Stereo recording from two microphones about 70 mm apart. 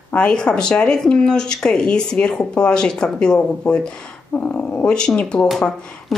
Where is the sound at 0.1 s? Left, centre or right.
Centre.